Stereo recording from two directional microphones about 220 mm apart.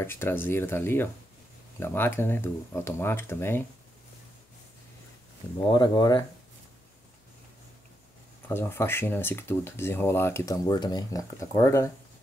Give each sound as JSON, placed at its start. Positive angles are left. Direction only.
{"t": 0.0, "sound": "speech", "side_deg": 10}
{"t": 5.7, "sound": "speech", "side_deg": 20}
{"t": 8.5, "sound": "speech", "side_deg": 10}